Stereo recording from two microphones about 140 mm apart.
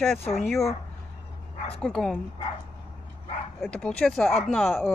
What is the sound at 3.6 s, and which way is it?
Speech, 5° left (ahead or behind).